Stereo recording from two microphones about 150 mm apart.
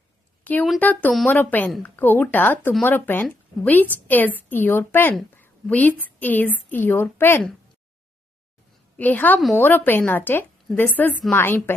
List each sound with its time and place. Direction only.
0.4 s a sound: 10° left (ahead or behind)
0.7 s a woman's voice: 10° left (ahead or behind)
8.9 s a woman's voice: 10° left (ahead or behind)